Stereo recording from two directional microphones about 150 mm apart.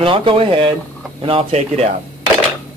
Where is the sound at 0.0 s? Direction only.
35° right (ahead or behind).